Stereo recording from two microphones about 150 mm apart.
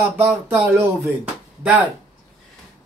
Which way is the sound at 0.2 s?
15° right (ahead or behind).